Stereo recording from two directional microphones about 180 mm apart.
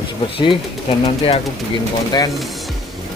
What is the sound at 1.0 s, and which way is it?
Speech, 30° left (ahead or behind).